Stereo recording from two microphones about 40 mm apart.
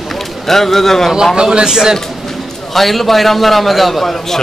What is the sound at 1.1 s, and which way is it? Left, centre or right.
Speech, centre.